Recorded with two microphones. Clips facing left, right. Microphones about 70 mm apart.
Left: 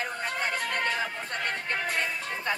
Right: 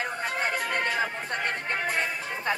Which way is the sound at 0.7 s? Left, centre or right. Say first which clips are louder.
Right 2 dB; centre.